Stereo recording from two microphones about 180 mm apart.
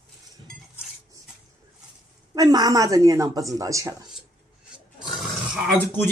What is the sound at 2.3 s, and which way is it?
Speech, 20° right (ahead or behind).